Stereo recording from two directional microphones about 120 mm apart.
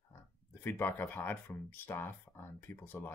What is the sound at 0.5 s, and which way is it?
Speech, 20° left (ahead or behind).